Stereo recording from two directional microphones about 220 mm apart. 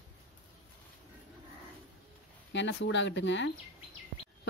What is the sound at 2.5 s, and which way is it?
Speech, 55° left (ahead or behind).